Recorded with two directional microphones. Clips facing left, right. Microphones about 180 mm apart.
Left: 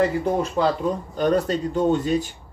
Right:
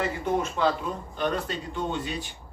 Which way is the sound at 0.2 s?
35° left (ahead or behind).